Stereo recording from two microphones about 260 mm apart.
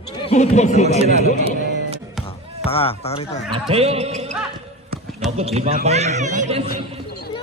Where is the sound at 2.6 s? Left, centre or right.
Left.